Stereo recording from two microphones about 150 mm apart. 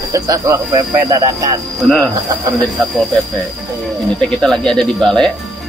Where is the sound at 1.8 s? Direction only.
Centre (ahead or behind).